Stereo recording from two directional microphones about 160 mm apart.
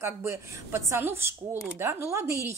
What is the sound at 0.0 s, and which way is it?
A woman's voice, 15° right (ahead or behind).